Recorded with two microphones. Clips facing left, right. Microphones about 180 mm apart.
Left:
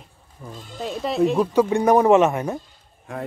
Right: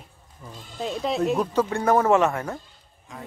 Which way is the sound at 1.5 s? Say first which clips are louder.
Left 4 dB; 15° left (ahead or behind).